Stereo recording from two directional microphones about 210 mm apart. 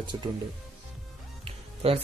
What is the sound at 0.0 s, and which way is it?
Speech, 20° right (ahead or behind).